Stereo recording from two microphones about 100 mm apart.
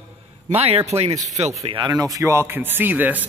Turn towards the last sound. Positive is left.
turn(degrees=-15)  # may be behind; listen again after turning